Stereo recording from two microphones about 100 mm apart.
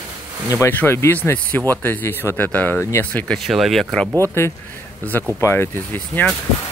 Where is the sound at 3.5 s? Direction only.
Centre (ahead or behind).